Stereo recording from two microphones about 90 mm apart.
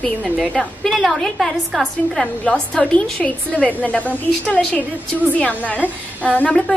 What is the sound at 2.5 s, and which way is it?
A woman's voice, 15° left (ahead or behind).